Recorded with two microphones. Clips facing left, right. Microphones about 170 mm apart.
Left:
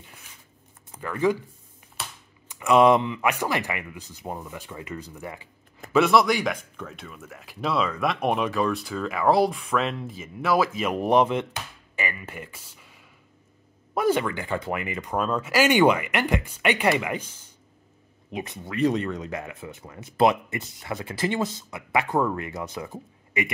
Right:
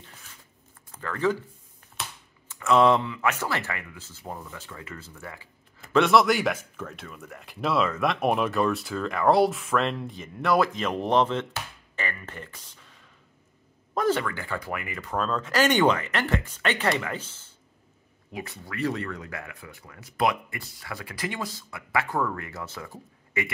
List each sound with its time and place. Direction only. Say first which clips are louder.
0.9 s speech: left 2 dB; 15° left (ahead or behind)
2.4 s speech: left 2 dB; 15° left (ahead or behind)
5.9 s speech: even; centre (ahead or behind); by 23.5 s 20° left (ahead or behind)